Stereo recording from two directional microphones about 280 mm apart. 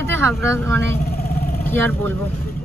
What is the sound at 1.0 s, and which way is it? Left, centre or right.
Vehicle, left.